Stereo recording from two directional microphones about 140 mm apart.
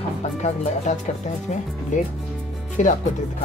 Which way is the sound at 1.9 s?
60° left (ahead or behind).